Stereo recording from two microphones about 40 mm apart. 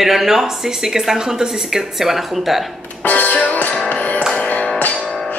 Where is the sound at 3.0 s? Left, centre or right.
Left.